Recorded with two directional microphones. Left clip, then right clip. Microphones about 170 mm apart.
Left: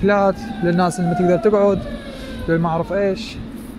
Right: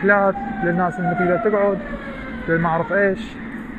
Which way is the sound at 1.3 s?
80° left.